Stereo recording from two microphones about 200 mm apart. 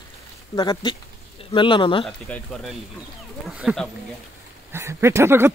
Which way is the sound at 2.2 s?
5° left (ahead or behind).